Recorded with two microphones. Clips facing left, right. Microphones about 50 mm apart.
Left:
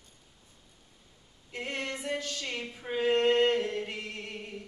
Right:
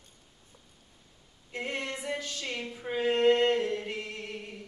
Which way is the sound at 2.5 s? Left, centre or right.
Centre.